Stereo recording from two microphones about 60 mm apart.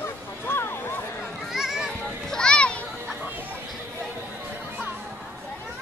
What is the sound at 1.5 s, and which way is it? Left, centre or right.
Children playing, centre.